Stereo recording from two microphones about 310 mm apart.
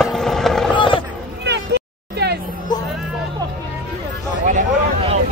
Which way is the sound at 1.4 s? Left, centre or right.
Right.